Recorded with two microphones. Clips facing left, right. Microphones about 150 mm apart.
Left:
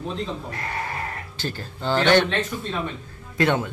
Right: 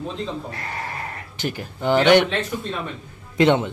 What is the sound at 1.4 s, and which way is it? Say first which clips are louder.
Speech: right 4 dB; 15° right (ahead or behind).